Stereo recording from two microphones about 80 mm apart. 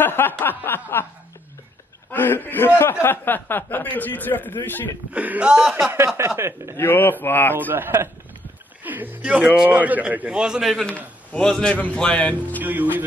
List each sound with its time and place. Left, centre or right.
0.0 s snicker: left
2.0 s a man's voice: left
5.1 s a man's voice: centre
5.9 s speech: right
6.8 s a man's voice: left
7.5 s a man's voice: right; by 10.9 s centre
11.3 s speech: centre
12.6 s a man's voice: right